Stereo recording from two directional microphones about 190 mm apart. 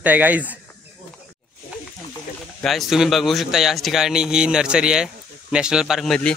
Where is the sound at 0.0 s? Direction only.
10° right (ahead or behind).